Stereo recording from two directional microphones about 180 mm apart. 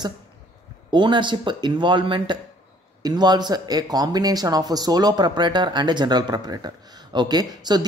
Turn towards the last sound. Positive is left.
turn(degrees=-25)  # may be behind; listen again after turning